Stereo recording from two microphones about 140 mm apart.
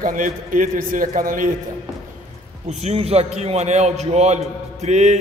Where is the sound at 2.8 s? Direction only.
45° right (ahead or behind).